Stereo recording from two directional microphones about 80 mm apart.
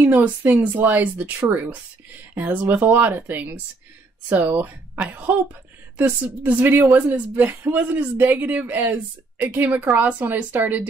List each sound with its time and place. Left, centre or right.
0.0 s a woman's voice: right